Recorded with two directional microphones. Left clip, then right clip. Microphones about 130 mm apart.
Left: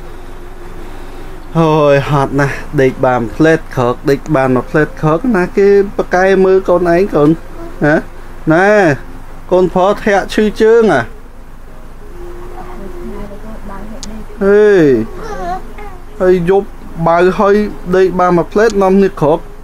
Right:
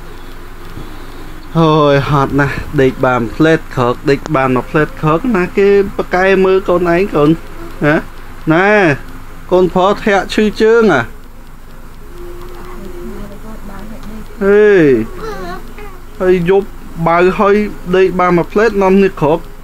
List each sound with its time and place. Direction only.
1.5 s speech: 25° left (ahead or behind); by 9.0 s 50° left (ahead or behind)
9.5 s speech: 25° left (ahead or behind)
14.4 s speech: 45° left (ahead or behind)
16.2 s speech: 50° left (ahead or behind)